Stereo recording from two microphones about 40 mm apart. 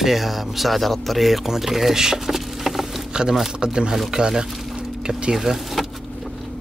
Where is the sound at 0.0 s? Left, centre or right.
Centre.